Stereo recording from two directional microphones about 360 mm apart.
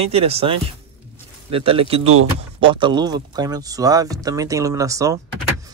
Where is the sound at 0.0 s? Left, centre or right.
Centre.